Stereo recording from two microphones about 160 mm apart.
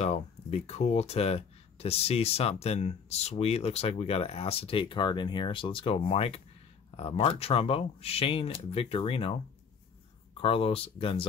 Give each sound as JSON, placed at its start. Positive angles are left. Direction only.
{"t": 0.0, "sound": "speech", "side_deg": 40}